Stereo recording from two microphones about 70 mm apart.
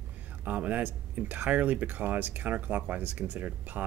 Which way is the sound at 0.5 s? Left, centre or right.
Right.